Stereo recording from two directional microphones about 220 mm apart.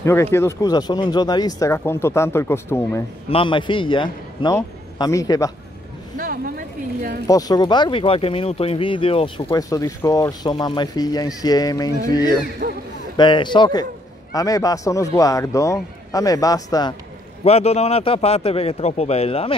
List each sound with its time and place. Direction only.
0.0 s speech: 10° left (ahead or behind)
3.3 s speech: 25° left (ahead or behind)
6.1 s a sound: 40° right (ahead or behind)
7.2 s speech: 15° left (ahead or behind)
12.6 s a man's voice: 40° right (ahead or behind)
13.1 s speech: 20° left (ahead or behind)
17.5 s speech: 30° left (ahead or behind)